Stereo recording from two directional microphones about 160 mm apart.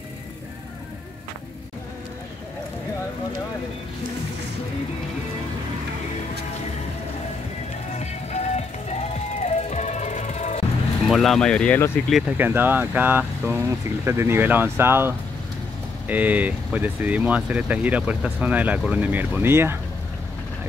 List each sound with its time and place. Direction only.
7.9 s music: 45° left (ahead or behind)
11.1 s speech: centre (ahead or behind)
12.1 s speech: 5° right (ahead or behind)